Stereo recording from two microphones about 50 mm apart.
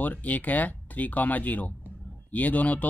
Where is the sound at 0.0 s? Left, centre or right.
Left.